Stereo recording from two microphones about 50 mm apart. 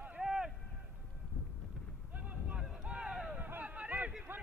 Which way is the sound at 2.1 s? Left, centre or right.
Right.